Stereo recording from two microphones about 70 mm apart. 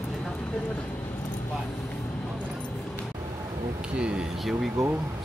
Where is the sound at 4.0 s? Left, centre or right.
Centre.